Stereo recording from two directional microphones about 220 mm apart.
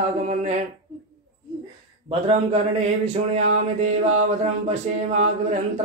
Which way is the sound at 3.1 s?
30° right (ahead or behind).